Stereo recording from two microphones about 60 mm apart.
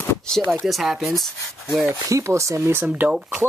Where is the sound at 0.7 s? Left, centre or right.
Centre.